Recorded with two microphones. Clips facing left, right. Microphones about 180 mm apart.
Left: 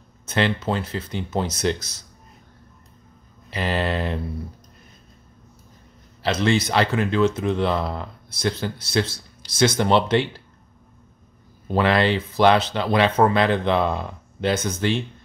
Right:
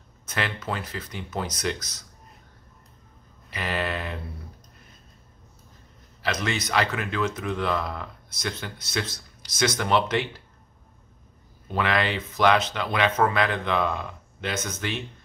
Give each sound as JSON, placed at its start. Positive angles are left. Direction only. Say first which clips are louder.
{"t": 0.3, "sound": "speech", "louder": "left 8 dB", "side_deg": 25}
{"t": 3.4, "sound": "speech", "louder": "left 5 dB", "side_deg": 30}
{"t": 6.2, "sound": "speech", "louder": "left 7 dB", "side_deg": 30}
{"t": 11.6, "sound": "speech", "louder": "left 6 dB", "side_deg": 30}